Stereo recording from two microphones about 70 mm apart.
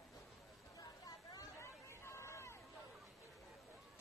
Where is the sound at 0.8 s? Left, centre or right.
Left.